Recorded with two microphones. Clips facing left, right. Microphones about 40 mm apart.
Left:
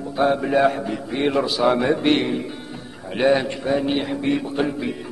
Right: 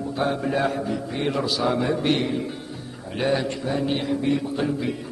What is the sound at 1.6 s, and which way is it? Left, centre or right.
A man's voice, left.